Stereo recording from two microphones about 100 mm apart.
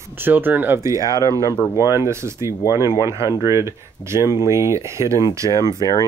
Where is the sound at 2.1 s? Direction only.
25° right (ahead or behind).